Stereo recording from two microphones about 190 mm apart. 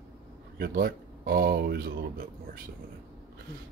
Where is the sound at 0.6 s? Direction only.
50° right (ahead or behind).